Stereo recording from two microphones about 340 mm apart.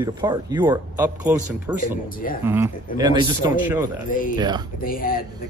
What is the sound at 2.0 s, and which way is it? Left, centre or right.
Speech, left.